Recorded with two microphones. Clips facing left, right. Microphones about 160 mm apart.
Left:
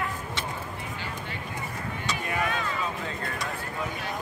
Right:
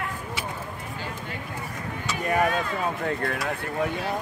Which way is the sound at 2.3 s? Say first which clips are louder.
Right 7 dB; 45° right (ahead or behind).